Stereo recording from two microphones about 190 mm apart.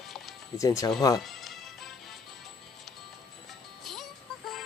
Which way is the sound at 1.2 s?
Centre (ahead or behind).